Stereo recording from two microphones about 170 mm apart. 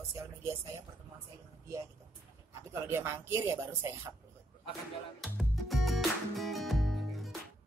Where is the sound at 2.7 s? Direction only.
15° right (ahead or behind).